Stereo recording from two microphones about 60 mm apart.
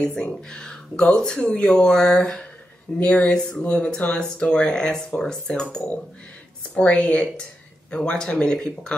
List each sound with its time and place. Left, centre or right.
0.0 s speech: centre